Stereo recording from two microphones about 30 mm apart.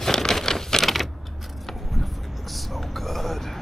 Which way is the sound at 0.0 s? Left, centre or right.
Centre.